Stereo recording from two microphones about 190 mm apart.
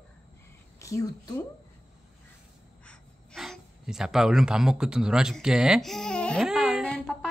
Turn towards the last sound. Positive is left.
turn(degrees=5)  # may be behind; listen again after turning